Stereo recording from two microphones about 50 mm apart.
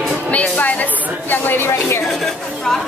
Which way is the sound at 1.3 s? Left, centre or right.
Left.